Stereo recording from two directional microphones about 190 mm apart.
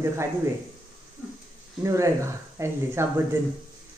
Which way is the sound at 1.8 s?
15° right (ahead or behind).